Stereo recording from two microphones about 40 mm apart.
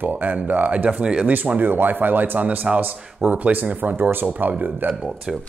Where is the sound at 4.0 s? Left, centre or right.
Right.